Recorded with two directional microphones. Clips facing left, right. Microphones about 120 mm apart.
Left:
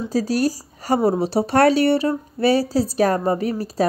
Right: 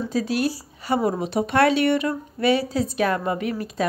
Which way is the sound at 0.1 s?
40° left (ahead or behind).